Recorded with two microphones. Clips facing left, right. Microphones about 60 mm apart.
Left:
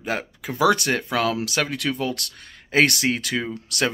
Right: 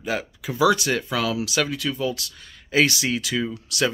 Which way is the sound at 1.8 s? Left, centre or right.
Left.